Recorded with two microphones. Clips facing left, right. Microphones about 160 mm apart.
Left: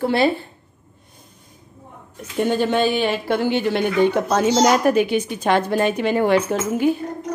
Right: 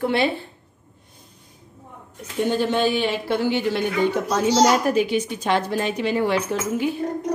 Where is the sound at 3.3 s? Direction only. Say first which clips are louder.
Left 1 dB; 55° left (ahead or behind).